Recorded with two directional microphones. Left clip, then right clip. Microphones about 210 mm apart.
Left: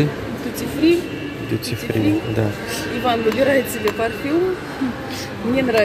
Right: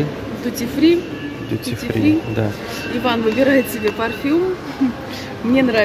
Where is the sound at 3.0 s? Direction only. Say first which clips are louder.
Right 1 dB; 50° right (ahead or behind).